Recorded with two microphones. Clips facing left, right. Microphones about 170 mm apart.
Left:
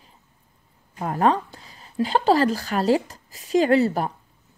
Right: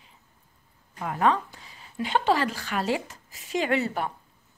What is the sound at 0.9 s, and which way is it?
Speech, 40° left (ahead or behind).